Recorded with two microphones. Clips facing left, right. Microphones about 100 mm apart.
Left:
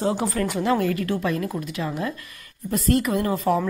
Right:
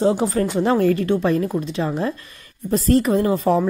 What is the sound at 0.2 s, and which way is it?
A woman's voice, 25° right (ahead or behind).